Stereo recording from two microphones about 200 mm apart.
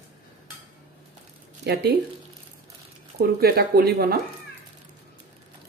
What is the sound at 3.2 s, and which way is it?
Speech, 50° right (ahead or behind).